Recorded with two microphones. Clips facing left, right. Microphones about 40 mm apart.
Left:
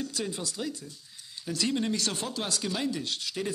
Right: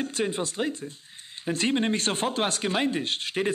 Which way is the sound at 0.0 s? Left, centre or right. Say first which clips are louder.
Right 6 dB; right.